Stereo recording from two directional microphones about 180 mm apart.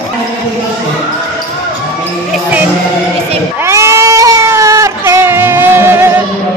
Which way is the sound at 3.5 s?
15° right (ahead or behind).